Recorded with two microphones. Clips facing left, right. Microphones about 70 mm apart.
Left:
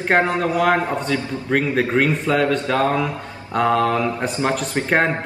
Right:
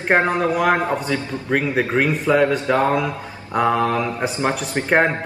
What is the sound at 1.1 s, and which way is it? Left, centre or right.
A man's voice, centre.